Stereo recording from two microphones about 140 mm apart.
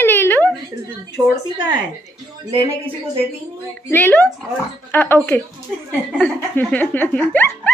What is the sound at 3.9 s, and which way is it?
Speech, 15° left (ahead or behind).